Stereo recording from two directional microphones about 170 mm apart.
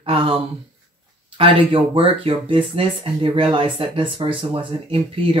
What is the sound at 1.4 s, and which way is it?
Speech, 30° right (ahead or behind).